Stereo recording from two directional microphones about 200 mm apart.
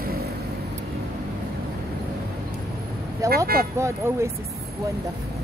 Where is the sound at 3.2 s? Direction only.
15° right (ahead or behind).